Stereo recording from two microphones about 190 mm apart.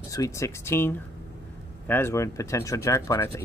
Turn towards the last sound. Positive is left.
turn(degrees=15)  # may be behind; listen again after turning